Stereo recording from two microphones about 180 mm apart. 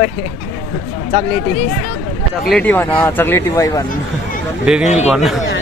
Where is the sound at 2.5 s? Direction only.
10° left (ahead or behind).